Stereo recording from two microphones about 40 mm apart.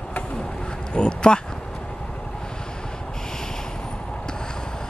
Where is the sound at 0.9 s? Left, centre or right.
Left.